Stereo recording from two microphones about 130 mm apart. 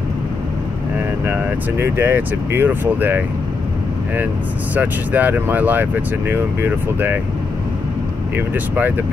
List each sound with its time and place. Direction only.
1.2 s speech: 15° right (ahead or behind)
4.7 s speech: 10° right (ahead or behind)
8.4 s speech: 15° right (ahead or behind)